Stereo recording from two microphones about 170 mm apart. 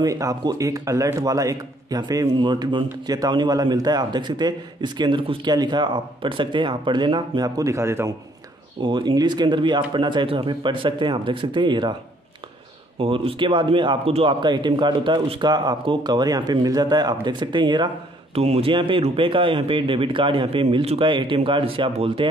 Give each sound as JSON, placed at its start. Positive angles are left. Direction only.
{"t": 0.0, "sound": "speech", "side_deg": -20}
{"t": 8.8, "sound": "speech", "side_deg": -25}
{"t": 13.0, "sound": "speech", "side_deg": -30}